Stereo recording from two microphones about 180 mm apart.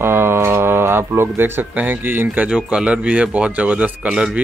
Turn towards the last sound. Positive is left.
turn(degrees=-5)  # may be behind; listen again after turning